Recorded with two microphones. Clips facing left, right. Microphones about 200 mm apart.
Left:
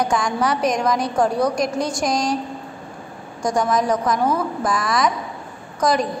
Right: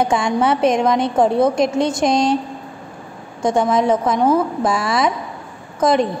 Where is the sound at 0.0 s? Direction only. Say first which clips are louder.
Right 4 dB; 25° right (ahead or behind).